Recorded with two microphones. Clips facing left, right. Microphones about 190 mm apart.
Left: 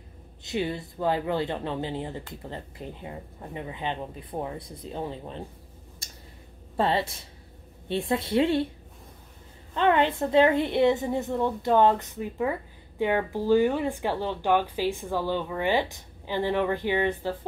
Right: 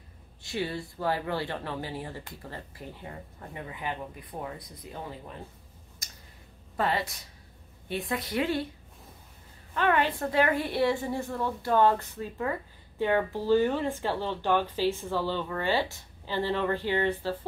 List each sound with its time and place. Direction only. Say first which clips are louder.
0.4 s speech: left 3 dB; 20° left (ahead or behind)
6.8 s speech: left 4 dB; 25° left (ahead or behind)
9.8 s speech: left 4 dB; 20° left (ahead or behind)